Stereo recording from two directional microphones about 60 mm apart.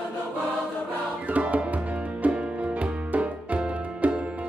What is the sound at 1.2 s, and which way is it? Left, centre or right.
Music, right.